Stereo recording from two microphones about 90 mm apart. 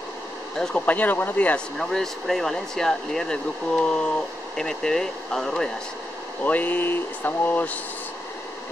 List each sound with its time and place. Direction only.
0.6 s speech: 15° left (ahead or behind)
1.8 s speech: 5° left (ahead or behind)
6.4 s speech: 20° left (ahead or behind)